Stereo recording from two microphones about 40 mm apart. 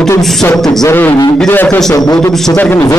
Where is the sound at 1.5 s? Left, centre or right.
Left.